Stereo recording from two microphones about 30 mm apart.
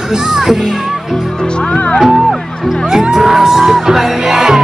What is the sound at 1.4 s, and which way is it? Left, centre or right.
Music, left.